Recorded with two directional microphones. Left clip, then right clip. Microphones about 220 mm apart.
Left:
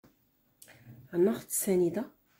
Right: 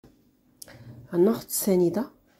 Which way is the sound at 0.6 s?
20° right (ahead or behind).